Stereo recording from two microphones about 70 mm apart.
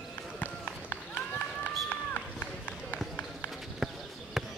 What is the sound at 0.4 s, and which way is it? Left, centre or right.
Run, left.